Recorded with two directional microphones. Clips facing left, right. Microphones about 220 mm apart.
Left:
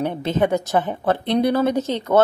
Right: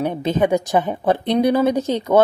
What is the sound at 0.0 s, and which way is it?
A woman's voice, 15° right (ahead or behind).